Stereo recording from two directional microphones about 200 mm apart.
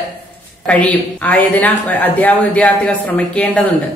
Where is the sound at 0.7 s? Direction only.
5° left (ahead or behind).